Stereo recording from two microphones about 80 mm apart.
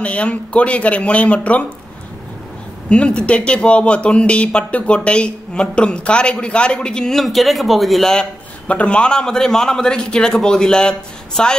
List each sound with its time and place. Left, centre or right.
0.0 s speech: centre
2.9 s speech: centre